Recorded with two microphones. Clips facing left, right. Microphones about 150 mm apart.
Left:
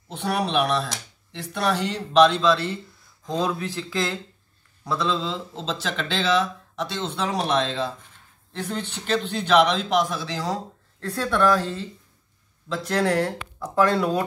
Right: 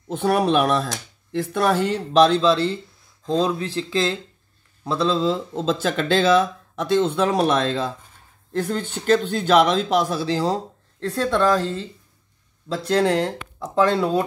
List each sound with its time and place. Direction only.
0.1 s speech: 45° right (ahead or behind); by 11.8 s 20° right (ahead or behind)
12.6 s speech: 35° right (ahead or behind)